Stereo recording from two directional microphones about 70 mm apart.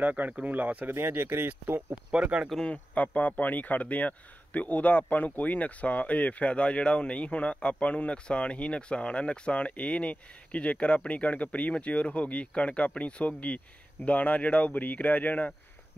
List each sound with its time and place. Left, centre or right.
0.0 s speech: right
2.1 s speech: centre
2.6 s speech: left